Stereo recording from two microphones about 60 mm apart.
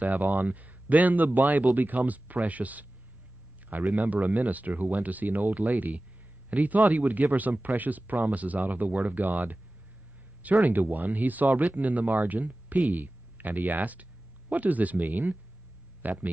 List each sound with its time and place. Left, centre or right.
0.0 s speech: right
3.9 s speech: right
10.6 s speech: right